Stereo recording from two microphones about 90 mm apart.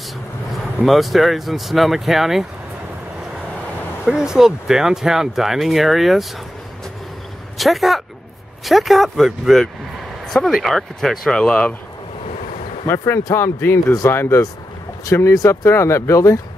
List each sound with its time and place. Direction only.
0.8 s speech: centre (ahead or behind)
4.0 s speech: 5° right (ahead or behind)
7.5 s speech: centre (ahead or behind)
12.8 s speech: 30° left (ahead or behind)